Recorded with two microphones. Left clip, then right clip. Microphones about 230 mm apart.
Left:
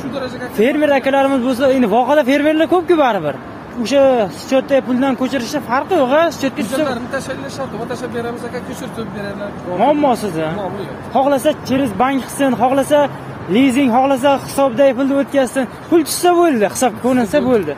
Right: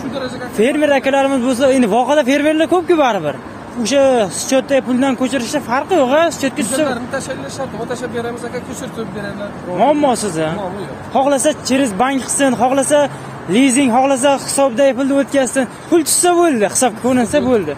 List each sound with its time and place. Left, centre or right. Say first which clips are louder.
0.6 s speech: even; centre
9.8 s speech: right 1 dB; centre